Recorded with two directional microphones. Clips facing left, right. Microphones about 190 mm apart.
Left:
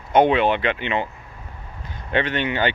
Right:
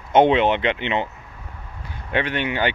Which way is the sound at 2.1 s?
10° right (ahead or behind).